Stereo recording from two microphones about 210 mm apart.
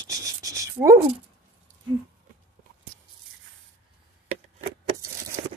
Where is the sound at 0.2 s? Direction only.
15° right (ahead or behind).